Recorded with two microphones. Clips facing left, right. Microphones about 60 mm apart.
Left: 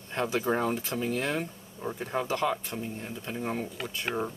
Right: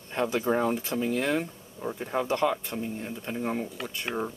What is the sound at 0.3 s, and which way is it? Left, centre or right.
Speech, centre.